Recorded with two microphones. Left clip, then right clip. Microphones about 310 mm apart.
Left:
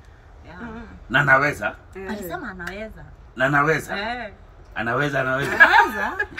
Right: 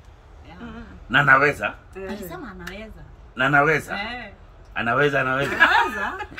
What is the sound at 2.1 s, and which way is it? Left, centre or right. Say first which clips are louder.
Speech: left 5 dB; centre.